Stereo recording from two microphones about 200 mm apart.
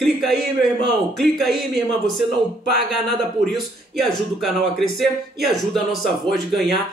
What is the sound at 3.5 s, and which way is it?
Speech, centre (ahead or behind).